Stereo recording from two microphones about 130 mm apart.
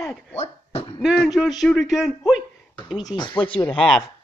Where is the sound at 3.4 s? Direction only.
40° left (ahead or behind).